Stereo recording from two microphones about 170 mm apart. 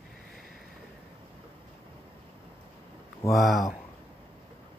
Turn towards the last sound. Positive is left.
turn(degrees=0)  # may be behind; listen again after turning